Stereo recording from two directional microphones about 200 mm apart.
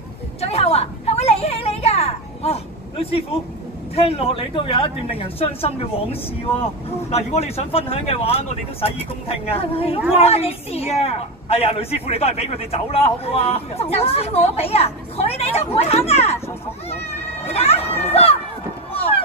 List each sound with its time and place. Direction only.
0.4 s a sound: 30° left (ahead or behind)
3.9 s a woman's voice: 30° left (ahead or behind)
7.1 s a woman's voice: 30° left (ahead or behind)
18.9 s run: 30° left (ahead or behind)